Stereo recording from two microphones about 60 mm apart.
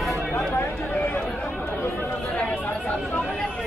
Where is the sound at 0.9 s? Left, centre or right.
Left.